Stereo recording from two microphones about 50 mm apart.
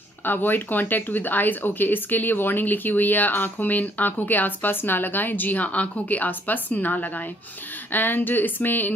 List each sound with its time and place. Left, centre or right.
0.2 s speech: left